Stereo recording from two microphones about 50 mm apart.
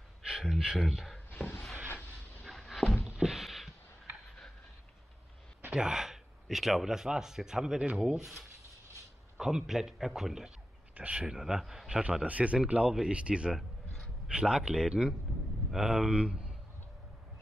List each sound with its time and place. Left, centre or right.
0.2 s speech: centre
1.3 s a sound: left
2.4 s a sound: centre
5.7 s speech: centre
9.4 s a man's voice: centre
11.0 s speech: right
11.2 s a man's voice: centre
12.3 s speech: right
12.9 s a man's voice: centre
13.6 s a sound: centre
14.3 s a man's voice: right